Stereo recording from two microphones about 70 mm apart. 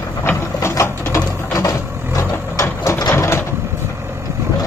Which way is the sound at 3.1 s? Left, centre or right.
Left.